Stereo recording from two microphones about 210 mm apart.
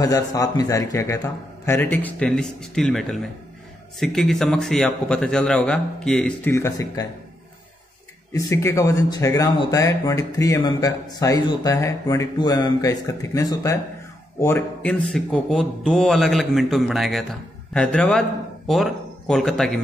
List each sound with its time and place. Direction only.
0.0 s a man's voice: 15° left (ahead or behind)
8.3 s a man's voice: 15° left (ahead or behind)